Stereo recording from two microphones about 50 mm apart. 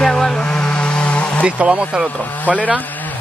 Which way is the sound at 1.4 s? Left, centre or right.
Right.